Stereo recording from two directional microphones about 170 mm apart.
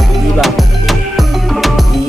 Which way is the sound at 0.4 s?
Centre (ahead or behind).